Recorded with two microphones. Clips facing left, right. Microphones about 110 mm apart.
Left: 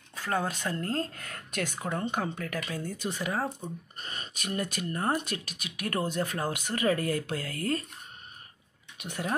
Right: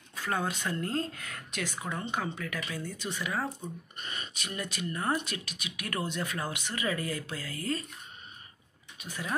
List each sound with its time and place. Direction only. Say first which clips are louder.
0.1 s speech: left 2 dB; 35° left (ahead or behind); by 7.8 s 55° left (ahead or behind)
8.9 s speech: left 3 dB; 70° left (ahead or behind)